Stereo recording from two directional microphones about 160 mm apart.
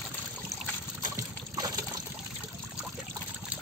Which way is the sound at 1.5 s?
25° right (ahead or behind).